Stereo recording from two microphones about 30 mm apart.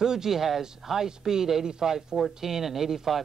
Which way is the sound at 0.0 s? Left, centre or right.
Centre.